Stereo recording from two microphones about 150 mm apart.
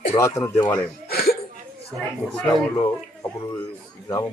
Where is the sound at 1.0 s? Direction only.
90° left.